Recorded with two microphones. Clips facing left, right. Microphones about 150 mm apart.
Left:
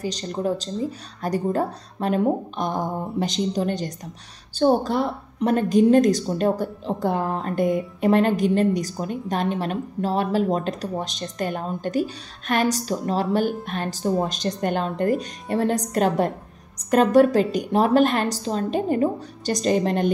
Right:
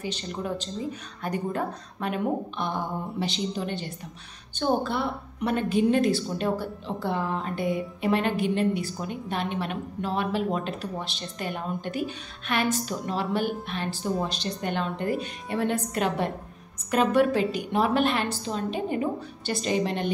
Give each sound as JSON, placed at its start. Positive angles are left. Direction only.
{"t": 0.0, "sound": "a woman's voice", "side_deg": 40}